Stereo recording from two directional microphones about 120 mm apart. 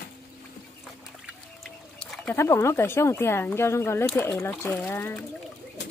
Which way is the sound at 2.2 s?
20° left (ahead or behind).